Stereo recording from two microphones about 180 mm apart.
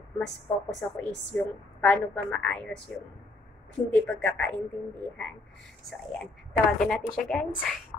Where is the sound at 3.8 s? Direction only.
5° left (ahead or behind).